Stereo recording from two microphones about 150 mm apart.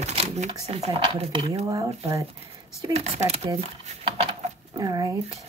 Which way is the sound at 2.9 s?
45° right (ahead or behind).